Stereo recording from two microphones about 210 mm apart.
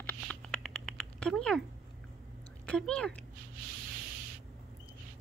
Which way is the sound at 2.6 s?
5° left (ahead or behind).